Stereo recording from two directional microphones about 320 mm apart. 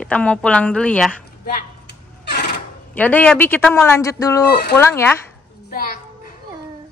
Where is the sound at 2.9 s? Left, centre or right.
Centre.